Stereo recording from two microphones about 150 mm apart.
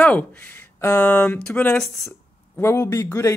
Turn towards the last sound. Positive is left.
turn(degrees=20)  # may be behind; listen again after turning